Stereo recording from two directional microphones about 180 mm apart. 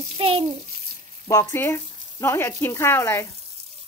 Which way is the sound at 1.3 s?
15° left (ahead or behind).